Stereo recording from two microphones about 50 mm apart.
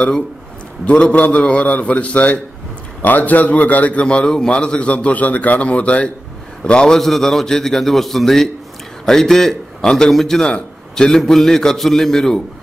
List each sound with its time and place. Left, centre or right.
0.8 s a man's voice: left
7.0 s a man's voice: centre